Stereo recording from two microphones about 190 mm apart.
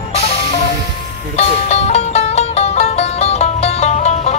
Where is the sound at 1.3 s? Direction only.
35° left (ahead or behind).